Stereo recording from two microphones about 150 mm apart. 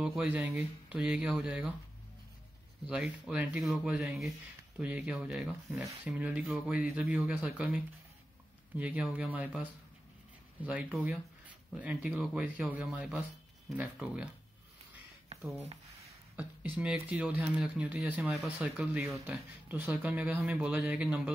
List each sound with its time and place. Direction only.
0.0 s speech: 5° right (ahead or behind)
2.9 s speech: 5° right (ahead or behind)
10.6 s speech: 10° right (ahead or behind)
15.3 s a sound: 45° right (ahead or behind)
16.7 s speech: 10° right (ahead or behind)